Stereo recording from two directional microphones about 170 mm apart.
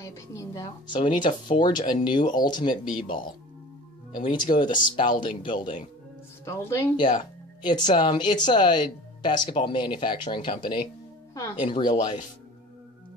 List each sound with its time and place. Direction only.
0.0 s speech: 20° left (ahead or behind)
0.9 s speech: 30° left (ahead or behind)
4.2 s speech: 25° left (ahead or behind)
6.4 s speech: 15° left (ahead or behind)
7.6 s speech: 25° left (ahead or behind)